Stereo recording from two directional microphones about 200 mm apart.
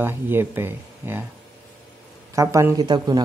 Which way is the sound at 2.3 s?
15° right (ahead or behind).